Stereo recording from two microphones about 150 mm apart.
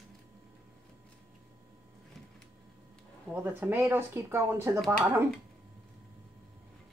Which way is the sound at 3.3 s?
15° right (ahead or behind).